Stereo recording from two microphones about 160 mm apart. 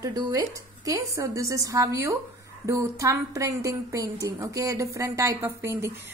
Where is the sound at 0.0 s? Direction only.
20° right (ahead or behind).